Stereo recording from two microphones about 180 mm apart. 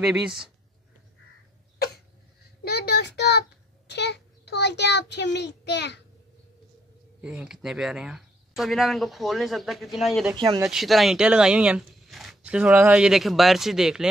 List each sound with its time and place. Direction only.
2.6 s a child's voice: 65° left (ahead or behind)
7.2 s speech: 5° right (ahead or behind)
10.3 s speech: 25° right (ahead or behind)
10.6 s speech: centre (ahead or behind)